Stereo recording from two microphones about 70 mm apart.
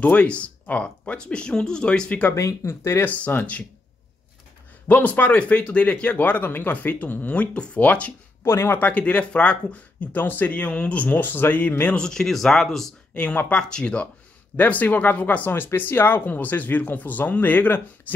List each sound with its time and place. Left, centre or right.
0.0 s speech: centre
2.3 s speech: left
3.1 s speech: left
4.8 s speech: left
8.5 s speech: left
8.7 s speech: left
11.9 s speech: centre
13.1 s speech: centre
14.6 s speech: left